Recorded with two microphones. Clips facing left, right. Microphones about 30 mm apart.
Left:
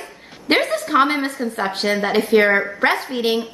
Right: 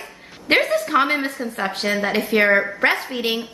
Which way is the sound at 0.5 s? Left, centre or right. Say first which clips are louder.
Left 1 dB; centre.